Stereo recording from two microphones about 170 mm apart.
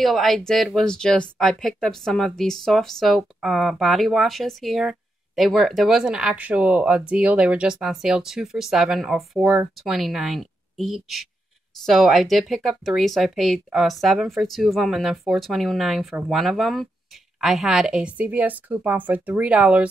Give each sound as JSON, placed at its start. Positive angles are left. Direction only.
{"t": 0.0, "sound": "a woman's voice", "side_deg": 0}